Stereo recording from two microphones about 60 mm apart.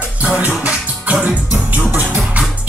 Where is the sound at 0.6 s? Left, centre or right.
Right.